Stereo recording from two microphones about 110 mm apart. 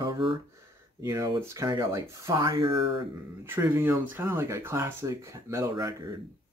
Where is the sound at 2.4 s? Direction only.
40° right (ahead or behind).